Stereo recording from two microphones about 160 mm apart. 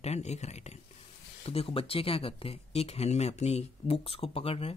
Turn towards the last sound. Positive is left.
turn(degrees=35)  # may be behind; listen again after turning